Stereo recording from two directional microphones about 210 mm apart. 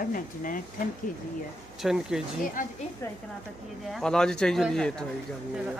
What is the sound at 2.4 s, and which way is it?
Speech, 40° left (ahead or behind).